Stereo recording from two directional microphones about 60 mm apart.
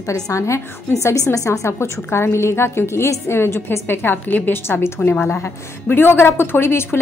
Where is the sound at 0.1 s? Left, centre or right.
Left.